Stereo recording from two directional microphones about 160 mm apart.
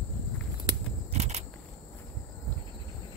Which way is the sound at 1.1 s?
45° right (ahead or behind).